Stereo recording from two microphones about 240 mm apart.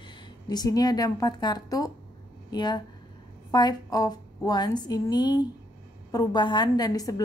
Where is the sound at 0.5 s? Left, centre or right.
Centre.